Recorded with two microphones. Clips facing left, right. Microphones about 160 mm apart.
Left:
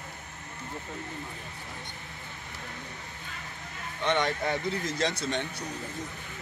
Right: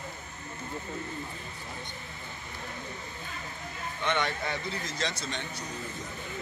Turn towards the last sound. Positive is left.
turn(degrees=60)  # may be behind; listen again after turning